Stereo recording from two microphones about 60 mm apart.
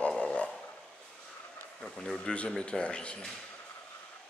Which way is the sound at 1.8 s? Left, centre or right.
Centre.